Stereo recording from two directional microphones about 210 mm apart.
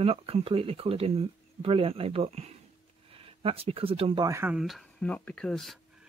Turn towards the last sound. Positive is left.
turn(degrees=0)  # may be behind; listen again after turning